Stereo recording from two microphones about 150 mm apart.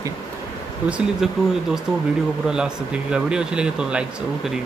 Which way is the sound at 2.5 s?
5° right (ahead or behind).